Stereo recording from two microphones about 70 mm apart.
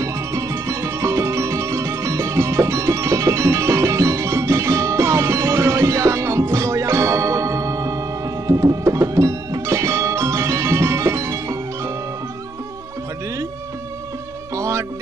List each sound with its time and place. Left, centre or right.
0.0 s music: right
14.5 s music: right